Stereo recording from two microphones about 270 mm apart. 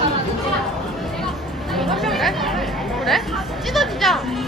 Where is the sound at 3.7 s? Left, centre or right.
Centre.